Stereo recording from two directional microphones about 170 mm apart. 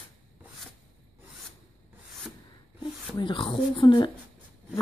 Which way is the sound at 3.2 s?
30° left (ahead or behind).